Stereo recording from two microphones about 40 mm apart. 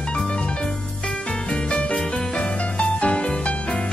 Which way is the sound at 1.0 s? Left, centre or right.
Centre.